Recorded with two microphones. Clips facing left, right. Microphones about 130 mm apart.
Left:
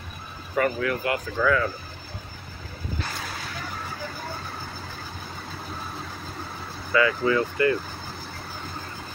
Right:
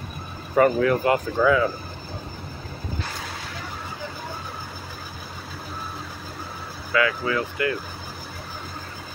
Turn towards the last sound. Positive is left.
turn(degrees=-5)  # may be behind; listen again after turning